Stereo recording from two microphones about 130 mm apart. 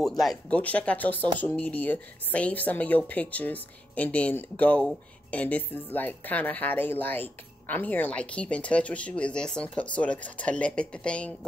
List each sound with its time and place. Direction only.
0.2 s speech: centre (ahead or behind)
0.6 s speech: 10° left (ahead or behind)